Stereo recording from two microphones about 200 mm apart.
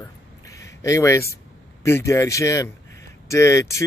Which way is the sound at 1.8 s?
15° left (ahead or behind).